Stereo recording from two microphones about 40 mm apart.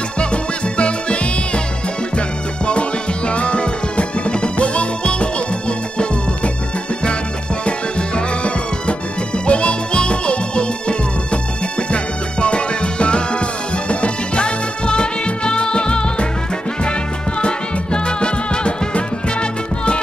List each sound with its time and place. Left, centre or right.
0.2 s music: left
9.5 s music: left
17.4 s music: left